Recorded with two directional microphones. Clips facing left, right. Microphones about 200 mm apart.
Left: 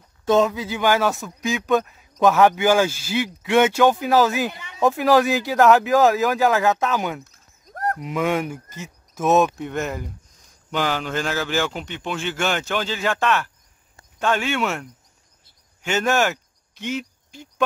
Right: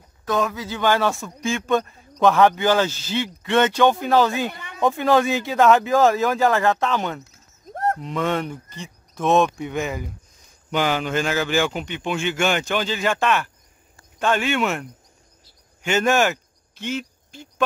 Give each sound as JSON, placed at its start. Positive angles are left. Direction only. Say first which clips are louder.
{"t": 0.2, "sound": "speech", "louder": "left 5 dB", "side_deg": 25}
{"t": 4.5, "sound": "a man's voice", "louder": "even", "side_deg": -55}
{"t": 4.7, "sound": "speech", "louder": "left 1 dB", "side_deg": 5}
{"t": 7.2, "sound": "horse", "louder": "right 8 dB", "side_deg": -25}
{"t": 8.0, "sound": "speech", "louder": "left 1 dB", "side_deg": 5}
{"t": 10.7, "sound": "speech", "louder": "right 2 dB", "side_deg": -15}
{"t": 11.3, "sound": "speech", "louder": "right 2 dB", "side_deg": -15}
{"t": 16.7, "sound": "cricket", "louder": "even", "side_deg": 0}